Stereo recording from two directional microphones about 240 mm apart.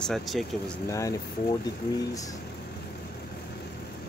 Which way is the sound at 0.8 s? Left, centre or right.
Centre.